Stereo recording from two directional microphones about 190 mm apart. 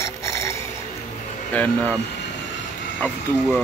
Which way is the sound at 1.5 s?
5° left (ahead or behind).